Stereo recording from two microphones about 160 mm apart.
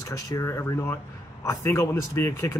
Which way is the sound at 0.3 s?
15° left (ahead or behind).